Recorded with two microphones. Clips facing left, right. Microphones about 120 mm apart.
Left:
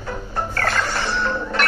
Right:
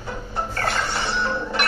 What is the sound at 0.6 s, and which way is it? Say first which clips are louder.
Music: left 2 dB; 20° right (ahead or behind).